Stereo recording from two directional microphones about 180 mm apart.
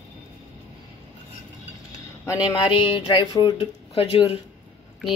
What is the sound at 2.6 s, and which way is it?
Speech, 25° left (ahead or behind).